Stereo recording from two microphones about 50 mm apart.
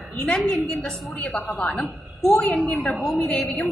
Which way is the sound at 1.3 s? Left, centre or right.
Left.